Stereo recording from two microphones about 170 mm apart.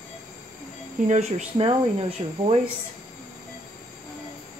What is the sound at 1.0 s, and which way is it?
Speech, 35° right (ahead or behind).